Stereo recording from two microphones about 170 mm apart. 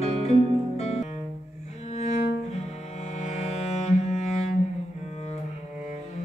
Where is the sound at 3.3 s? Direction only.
40° left (ahead or behind).